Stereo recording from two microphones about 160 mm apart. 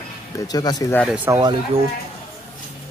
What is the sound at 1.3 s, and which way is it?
Speech, 25° right (ahead or behind).